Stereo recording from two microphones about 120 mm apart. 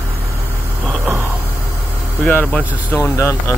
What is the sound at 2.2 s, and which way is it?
Speech, 15° left (ahead or behind).